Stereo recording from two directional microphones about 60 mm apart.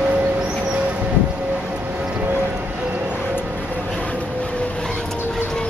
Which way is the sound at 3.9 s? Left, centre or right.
Left.